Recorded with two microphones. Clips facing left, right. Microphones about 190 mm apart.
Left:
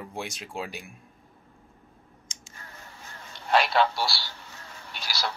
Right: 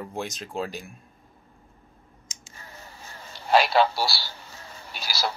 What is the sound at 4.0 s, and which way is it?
Speech, 5° right (ahead or behind).